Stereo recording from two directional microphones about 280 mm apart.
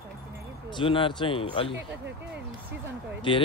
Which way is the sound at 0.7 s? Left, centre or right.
Centre.